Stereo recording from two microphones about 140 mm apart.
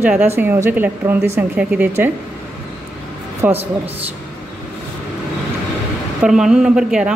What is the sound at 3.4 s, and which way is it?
Speech, 15° right (ahead or behind).